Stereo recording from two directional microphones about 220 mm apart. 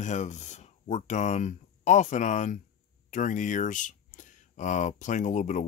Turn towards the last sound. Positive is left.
turn(degrees=35)  # may be behind; listen again after turning